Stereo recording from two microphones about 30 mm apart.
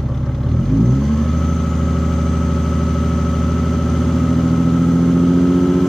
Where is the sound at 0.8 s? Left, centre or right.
Centre.